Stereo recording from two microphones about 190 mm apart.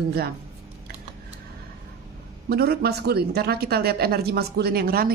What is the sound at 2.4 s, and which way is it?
Speech, 55° right (ahead or behind).